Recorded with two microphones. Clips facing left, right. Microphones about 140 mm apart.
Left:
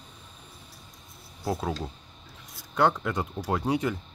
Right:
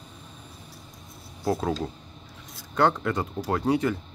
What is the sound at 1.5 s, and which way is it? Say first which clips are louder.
Speech: right 4 dB; 5° left (ahead or behind).